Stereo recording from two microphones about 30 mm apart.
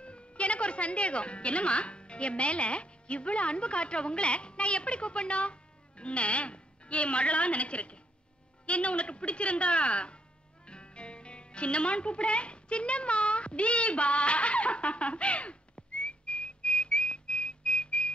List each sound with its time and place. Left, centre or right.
0.0 s a woman's voice: left
10.7 s music: left